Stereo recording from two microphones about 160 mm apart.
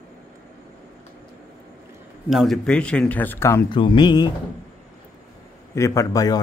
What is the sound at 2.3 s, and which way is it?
Speech, centre (ahead or behind).